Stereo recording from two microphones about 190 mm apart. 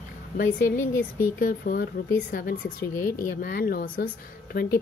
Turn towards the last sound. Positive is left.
turn(degrees=50)  # may be behind; listen again after turning